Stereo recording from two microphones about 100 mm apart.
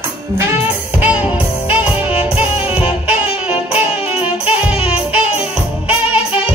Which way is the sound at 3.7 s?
75° left (ahead or behind).